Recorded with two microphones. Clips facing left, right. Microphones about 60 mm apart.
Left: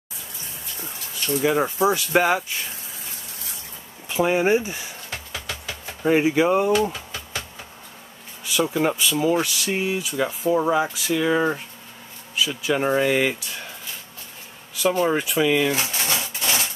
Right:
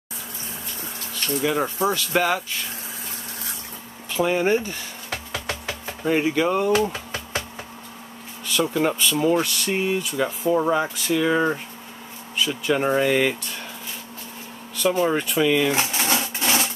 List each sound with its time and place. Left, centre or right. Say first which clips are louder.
1.4 s speech: left 3 dB; centre
4.1 s speech: left 1 dB; centre
5.1 s music: right 4 dB; right
6.0 s speech: left 3 dB; centre
6.9 s music: right 3 dB; right
8.5 s speech: even; centre
15.0 s speech: even; centre
15.9 s a sound: right 3 dB; right